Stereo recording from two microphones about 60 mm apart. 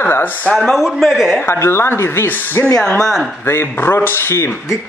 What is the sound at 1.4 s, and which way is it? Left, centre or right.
Speech, left.